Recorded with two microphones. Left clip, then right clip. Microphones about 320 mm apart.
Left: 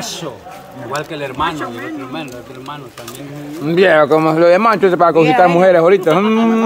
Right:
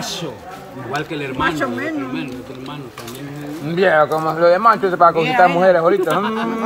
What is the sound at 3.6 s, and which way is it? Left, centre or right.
Speech, left.